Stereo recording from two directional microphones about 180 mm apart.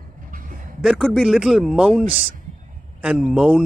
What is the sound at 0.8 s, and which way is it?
A man's voice, centre (ahead or behind).